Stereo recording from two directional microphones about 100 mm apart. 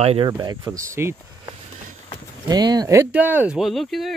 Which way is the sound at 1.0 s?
20° right (ahead or behind).